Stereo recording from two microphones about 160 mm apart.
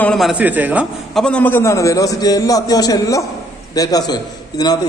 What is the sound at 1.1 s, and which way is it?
A man's voice, 5° left (ahead or behind).